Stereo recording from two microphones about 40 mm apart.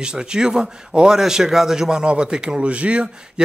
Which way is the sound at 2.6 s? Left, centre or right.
Right.